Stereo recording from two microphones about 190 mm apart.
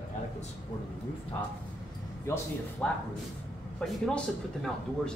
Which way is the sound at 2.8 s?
10° left (ahead or behind).